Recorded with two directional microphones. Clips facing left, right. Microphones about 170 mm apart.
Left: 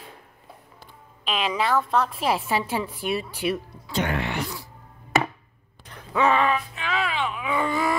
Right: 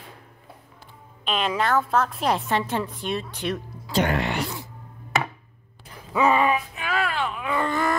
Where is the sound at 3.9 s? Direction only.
40° right (ahead or behind).